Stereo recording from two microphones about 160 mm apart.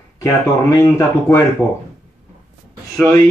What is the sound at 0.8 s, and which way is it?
Speech, 15° left (ahead or behind).